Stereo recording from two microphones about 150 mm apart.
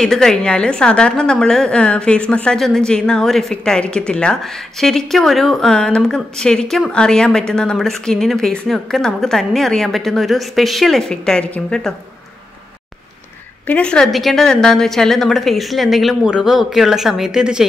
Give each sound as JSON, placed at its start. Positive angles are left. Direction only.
{"t": 0.0, "sound": "a woman's voice", "side_deg": 5}
{"t": 13.7, "sound": "a woman's voice", "side_deg": 5}